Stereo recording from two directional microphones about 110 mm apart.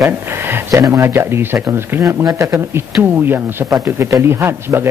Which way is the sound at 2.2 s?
35° right (ahead or behind).